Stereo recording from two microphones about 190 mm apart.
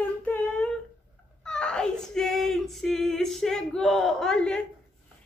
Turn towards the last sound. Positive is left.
turn(degrees=5)  # may be behind; listen again after turning